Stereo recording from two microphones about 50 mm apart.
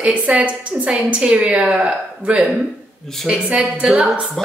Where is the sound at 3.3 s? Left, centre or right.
Right.